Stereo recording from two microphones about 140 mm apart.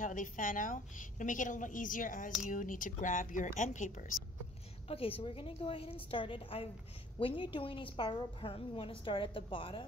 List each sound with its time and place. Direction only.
0.0 s a woman's voice: 70° left (ahead or behind)
4.8 s a woman's voice: 45° left (ahead or behind)